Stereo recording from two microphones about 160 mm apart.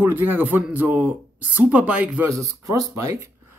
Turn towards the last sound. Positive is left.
turn(degrees=-20)  # may be behind; listen again after turning